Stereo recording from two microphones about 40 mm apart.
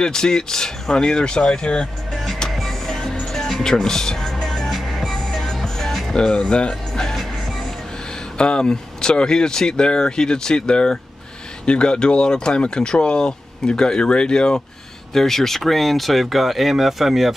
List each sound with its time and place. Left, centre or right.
0.0 s speech: centre
2.5 s music: centre
3.3 s speech: centre
4.3 s music: centre
5.1 s music: centre
6.1 s speech: centre
6.7 s music: centre
8.4 s speech: left
15.1 s speech: centre